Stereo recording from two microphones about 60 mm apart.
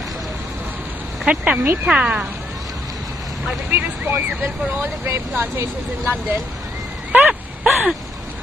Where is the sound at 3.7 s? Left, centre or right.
Right.